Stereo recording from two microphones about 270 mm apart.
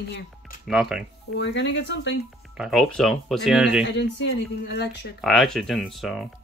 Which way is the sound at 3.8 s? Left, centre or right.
Left.